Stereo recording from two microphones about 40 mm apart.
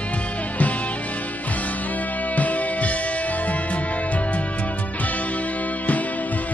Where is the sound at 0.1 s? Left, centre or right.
Left.